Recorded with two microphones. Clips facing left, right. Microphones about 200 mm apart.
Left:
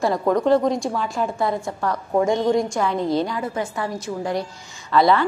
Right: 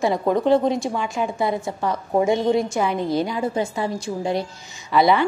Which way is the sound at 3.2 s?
15° right (ahead or behind).